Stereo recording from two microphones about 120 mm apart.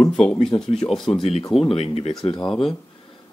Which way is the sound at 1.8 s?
55° left (ahead or behind).